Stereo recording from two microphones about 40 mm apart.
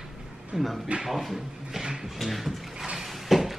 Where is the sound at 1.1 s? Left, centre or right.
Centre.